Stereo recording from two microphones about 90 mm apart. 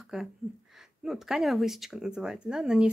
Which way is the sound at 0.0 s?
5° right (ahead or behind).